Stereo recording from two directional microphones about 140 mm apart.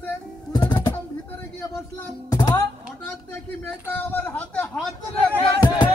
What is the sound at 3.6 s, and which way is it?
Speech, 15° left (ahead or behind).